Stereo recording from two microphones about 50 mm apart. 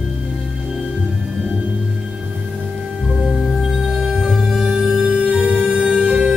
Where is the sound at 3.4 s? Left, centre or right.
Centre.